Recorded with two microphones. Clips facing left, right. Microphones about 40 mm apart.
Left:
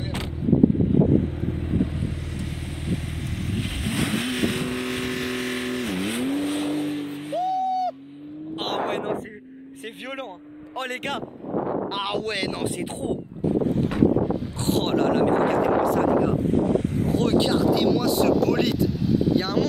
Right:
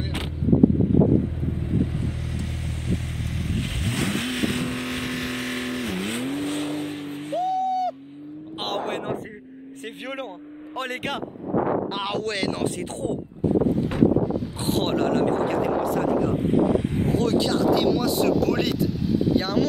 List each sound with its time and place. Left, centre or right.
3.8 s vehicle: centre
7.5 s a sound: right
8.5 s vehicle: centre
10.8 s speech: centre
14.7 s speech: centre
17.2 s speech: left
17.7 s speech: centre